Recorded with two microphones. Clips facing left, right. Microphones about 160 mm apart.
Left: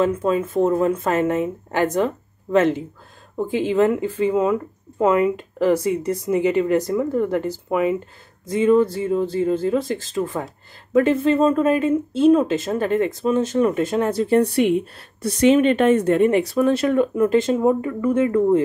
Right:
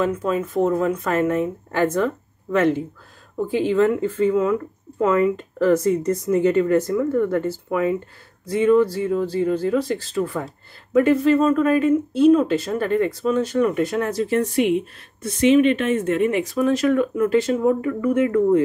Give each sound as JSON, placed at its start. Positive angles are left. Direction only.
{"t": 0.0, "sound": "speech", "side_deg": 25}